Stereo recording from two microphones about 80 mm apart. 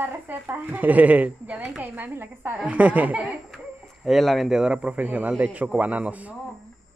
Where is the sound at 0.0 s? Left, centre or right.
Right.